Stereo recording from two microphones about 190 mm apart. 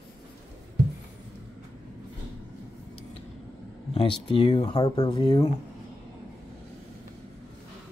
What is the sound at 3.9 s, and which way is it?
Speech, 30° left (ahead or behind).